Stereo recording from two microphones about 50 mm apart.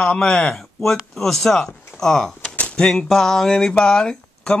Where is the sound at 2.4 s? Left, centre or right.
Left.